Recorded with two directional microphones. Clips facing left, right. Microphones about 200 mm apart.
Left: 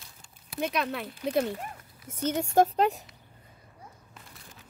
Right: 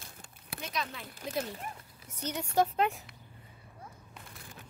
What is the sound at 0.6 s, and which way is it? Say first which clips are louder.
Speech: left 9 dB; 60° left (ahead or behind).